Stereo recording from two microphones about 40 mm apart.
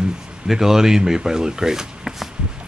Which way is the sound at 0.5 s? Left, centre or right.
Centre.